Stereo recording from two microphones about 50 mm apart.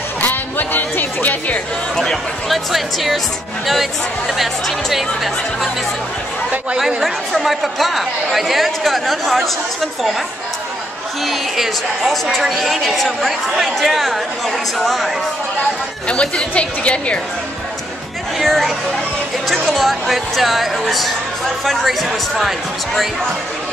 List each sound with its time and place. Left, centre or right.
0.2 s music: left
2.0 s speech: centre
7.0 s speech: centre
11.2 s speech: centre
16.1 s a woman's voice: left
18.4 s speech: centre
22.4 s speech: centre